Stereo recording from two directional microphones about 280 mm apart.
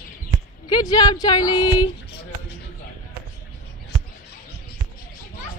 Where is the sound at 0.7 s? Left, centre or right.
Centre.